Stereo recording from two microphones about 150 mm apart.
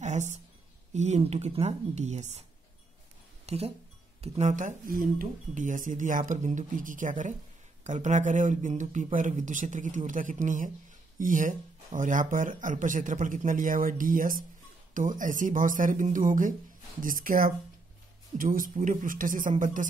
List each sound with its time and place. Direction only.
0.0 s a sound: 50° right (ahead or behind)
0.9 s speech: 50° right (ahead or behind)
3.4 s speech: 45° right (ahead or behind); by 19.9 s 60° right (ahead or behind)